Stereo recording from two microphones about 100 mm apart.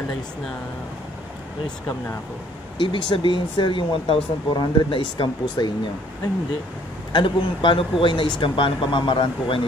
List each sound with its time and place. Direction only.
2.8 s speech: 55° left (ahead or behind)
7.1 s speech: 55° left (ahead or behind)